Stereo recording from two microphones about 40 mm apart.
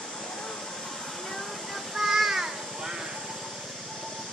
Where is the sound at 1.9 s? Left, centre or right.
Centre.